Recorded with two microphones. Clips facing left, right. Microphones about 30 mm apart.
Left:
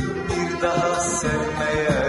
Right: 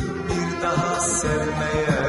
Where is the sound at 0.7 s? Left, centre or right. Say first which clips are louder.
Left 1 dB; centre.